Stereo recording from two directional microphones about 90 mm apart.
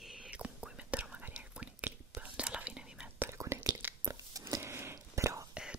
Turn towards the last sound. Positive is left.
turn(degrees=-35)  # may be behind; listen again after turning